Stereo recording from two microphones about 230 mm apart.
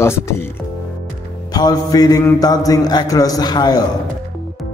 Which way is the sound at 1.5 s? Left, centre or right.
Centre.